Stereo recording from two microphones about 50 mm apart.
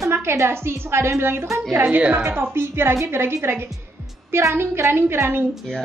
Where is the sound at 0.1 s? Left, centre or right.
Right.